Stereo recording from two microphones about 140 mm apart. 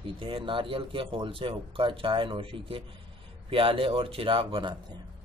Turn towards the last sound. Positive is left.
turn(degrees=-40)  # may be behind; listen again after turning